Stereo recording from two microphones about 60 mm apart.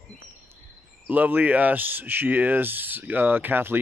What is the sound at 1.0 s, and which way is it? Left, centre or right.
Speech, right.